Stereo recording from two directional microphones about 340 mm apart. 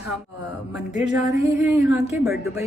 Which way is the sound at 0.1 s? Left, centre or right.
Centre.